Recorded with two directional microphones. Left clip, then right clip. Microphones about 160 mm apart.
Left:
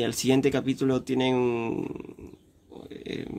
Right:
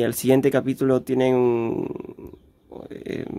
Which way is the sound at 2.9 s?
35° right (ahead or behind).